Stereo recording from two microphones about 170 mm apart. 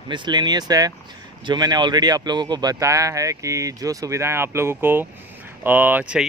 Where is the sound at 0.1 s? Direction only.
25° right (ahead or behind).